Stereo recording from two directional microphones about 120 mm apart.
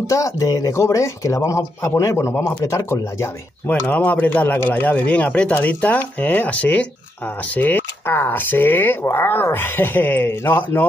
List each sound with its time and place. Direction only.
0.0 s speech: 25° left (ahead or behind)